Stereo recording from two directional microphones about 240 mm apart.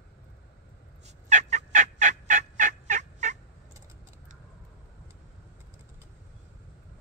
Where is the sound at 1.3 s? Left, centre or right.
Right.